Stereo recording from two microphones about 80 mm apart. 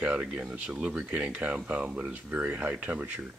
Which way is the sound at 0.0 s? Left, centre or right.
Centre.